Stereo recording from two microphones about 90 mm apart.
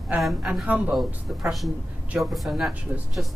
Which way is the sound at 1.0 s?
Centre (ahead or behind).